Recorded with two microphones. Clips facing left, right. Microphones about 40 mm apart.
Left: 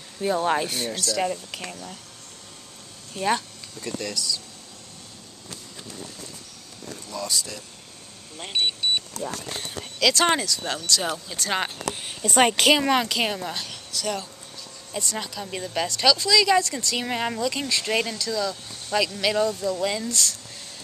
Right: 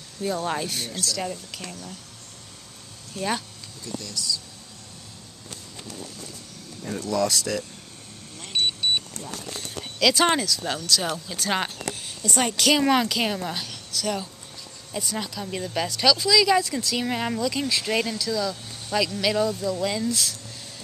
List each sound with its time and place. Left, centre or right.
0.2 s speech: left
3.2 s speech: centre
3.8 s speech: left
7.0 s speech: right
8.4 s speech: left
8.6 s vehicle: centre
9.1 s speech: left
9.9 s a woman's voice: centre
11.9 s a sound: left
12.4 s speech: left
12.7 s a woman's voice: centre